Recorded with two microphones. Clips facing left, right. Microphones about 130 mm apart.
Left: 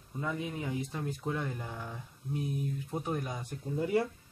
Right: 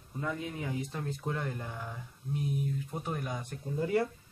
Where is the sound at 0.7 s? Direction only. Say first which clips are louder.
Left 1 dB; 5° left (ahead or behind).